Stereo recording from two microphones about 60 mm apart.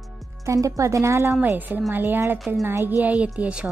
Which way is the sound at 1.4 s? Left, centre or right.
Right.